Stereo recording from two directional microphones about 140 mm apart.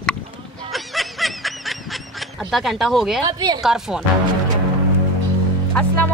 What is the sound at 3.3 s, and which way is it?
Speech, 25° right (ahead or behind).